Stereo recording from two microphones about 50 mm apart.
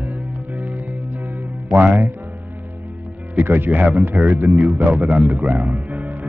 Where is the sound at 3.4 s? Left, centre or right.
Right.